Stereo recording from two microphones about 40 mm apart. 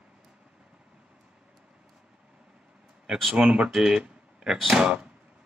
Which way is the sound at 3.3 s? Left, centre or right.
Right.